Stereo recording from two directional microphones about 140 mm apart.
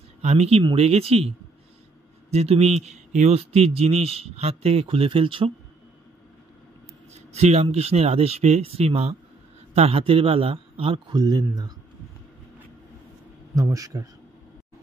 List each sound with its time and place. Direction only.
0.2 s speech: 50° right (ahead or behind)
2.3 s speech: 50° right (ahead or behind)
7.3 s a man's voice: 50° right (ahead or behind)
11.1 s speech: 25° right (ahead or behind)
13.6 s speech: 25° right (ahead or behind)